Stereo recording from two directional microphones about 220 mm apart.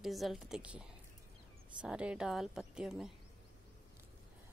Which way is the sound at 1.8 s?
5° right (ahead or behind).